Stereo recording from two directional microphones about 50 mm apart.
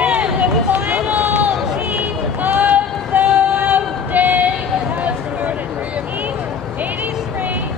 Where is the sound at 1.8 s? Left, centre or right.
Right.